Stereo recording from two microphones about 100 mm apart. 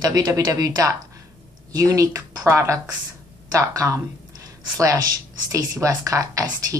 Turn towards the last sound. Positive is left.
turn(degrees=-35)  # may be behind; listen again after turning